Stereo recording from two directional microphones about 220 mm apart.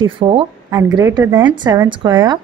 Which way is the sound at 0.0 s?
20° right (ahead or behind).